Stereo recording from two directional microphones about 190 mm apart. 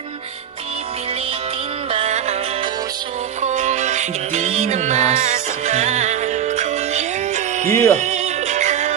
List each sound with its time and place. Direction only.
1.9 s music: 35° right (ahead or behind)
3.4 s music: 40° right (ahead or behind)